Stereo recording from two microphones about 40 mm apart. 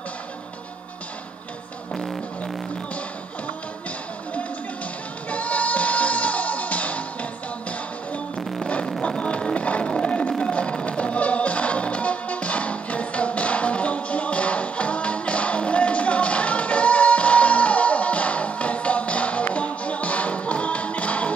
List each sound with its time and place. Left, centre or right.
1.9 s music: centre
5.3 s music: left
8.4 s music: centre
9.3 s music: left
9.8 s music: left